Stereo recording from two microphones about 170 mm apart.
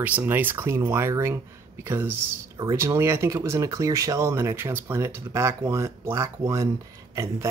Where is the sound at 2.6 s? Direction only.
20° right (ahead or behind).